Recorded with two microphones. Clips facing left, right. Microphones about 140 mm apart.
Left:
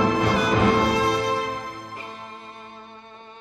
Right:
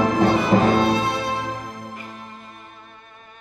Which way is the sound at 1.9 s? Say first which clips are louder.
Even; 30° left (ahead or behind).